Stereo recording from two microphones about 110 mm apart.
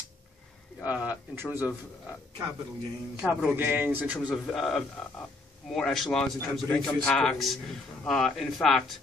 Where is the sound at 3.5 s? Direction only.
15° right (ahead or behind).